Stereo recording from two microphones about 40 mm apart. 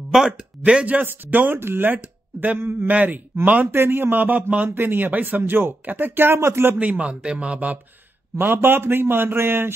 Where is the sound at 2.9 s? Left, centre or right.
Right.